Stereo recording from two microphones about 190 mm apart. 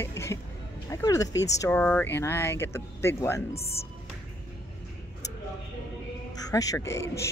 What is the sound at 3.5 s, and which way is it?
Speech, 30° left (ahead or behind).